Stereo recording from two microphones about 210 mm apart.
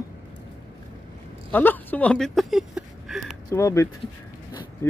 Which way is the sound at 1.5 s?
10° left (ahead or behind).